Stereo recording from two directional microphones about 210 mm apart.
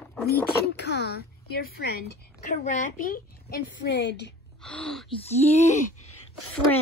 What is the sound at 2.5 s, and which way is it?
A woman's voice, 35° left (ahead or behind).